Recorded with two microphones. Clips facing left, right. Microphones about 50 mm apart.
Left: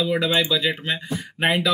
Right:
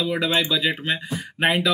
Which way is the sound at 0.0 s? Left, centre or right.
Centre.